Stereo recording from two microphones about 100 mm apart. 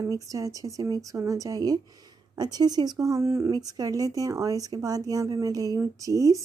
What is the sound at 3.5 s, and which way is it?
A woman's voice, 40° right (ahead or behind).